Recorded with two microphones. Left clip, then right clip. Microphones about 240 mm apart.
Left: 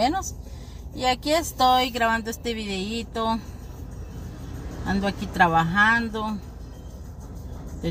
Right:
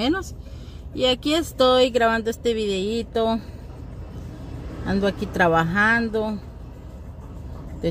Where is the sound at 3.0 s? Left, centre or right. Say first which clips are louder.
Right 1 dB; left.